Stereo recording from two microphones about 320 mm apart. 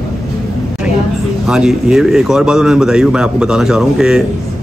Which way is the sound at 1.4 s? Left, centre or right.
Centre.